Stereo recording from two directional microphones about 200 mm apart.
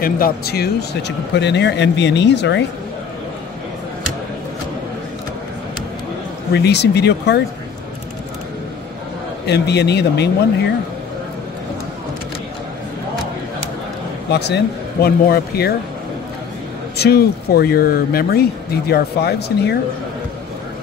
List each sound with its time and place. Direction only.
0.0 s speech: 50° left (ahead or behind)
6.5 s speech: 55° left (ahead or behind)
9.5 s speech: 55° left (ahead or behind)
14.3 s speech: 55° left (ahead or behind)
16.9 s speech: 55° left (ahead or behind)